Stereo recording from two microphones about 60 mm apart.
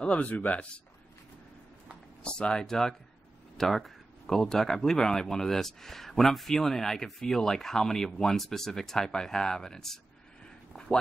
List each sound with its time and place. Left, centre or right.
0.0 s speech: left
2.2 s speech: centre